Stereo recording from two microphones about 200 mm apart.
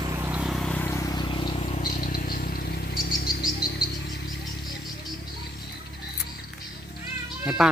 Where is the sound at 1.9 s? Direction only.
45° left (ahead or behind).